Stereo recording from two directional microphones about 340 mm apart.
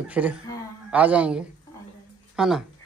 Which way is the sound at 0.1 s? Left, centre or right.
Centre.